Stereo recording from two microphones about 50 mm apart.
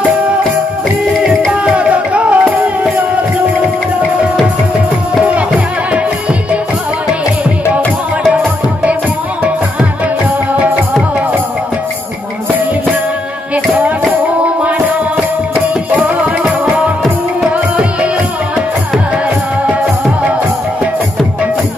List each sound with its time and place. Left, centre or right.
1.6 s music: right
10.6 s music: right
14.2 s music: right